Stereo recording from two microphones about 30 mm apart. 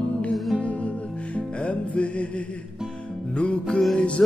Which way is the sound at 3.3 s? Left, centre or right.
Left.